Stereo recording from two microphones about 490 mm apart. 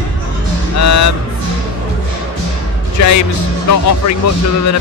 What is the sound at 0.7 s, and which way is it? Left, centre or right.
Music, left.